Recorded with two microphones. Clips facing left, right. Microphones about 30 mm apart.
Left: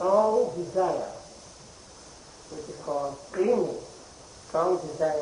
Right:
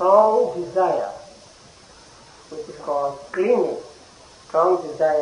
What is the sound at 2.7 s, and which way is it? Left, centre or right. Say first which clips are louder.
A man's voice: right 7 dB; right.